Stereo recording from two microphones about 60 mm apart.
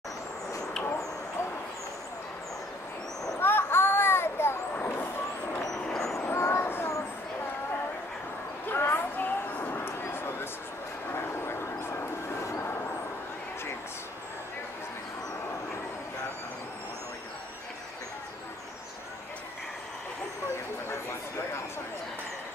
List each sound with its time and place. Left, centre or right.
3.3 s a sound: left
4.7 s vehicle: left
5.6 s vehicle: centre
6.3 s vehicle: left
8.6 s a sound: left
11.1 s dog: left